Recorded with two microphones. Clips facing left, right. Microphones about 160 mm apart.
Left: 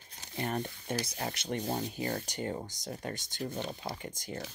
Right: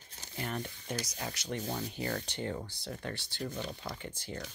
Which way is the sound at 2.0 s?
35° left (ahead or behind).